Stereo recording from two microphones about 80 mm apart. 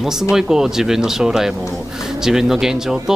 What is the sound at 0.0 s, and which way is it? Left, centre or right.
Speech, centre.